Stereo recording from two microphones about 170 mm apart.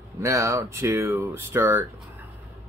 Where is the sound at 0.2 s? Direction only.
20° right (ahead or behind).